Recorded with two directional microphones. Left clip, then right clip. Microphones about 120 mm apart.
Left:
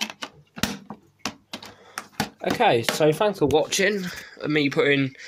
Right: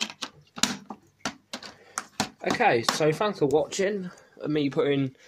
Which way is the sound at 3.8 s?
5° left (ahead or behind).